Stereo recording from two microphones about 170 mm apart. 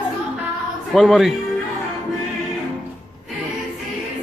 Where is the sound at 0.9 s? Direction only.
Centre (ahead or behind).